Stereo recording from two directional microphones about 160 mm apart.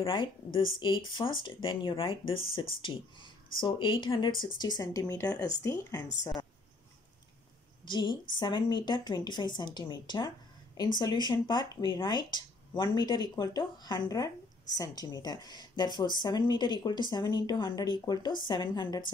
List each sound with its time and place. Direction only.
0.0 s speech: 30° left (ahead or behind)
7.9 s speech: 30° left (ahead or behind)